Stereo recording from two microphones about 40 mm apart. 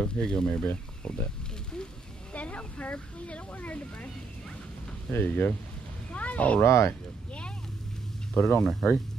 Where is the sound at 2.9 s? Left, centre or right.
Left.